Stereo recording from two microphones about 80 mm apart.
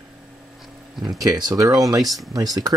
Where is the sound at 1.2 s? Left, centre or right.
Right.